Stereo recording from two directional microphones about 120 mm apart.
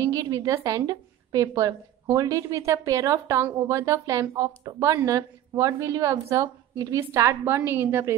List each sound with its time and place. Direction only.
0.1 s speech: 30° right (ahead or behind)